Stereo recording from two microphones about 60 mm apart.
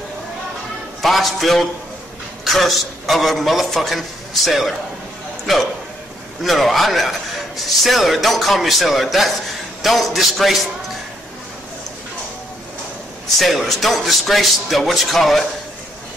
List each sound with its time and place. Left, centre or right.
1.0 s a man's voice: centre
6.4 s a man's voice: centre
13.4 s a man's voice: centre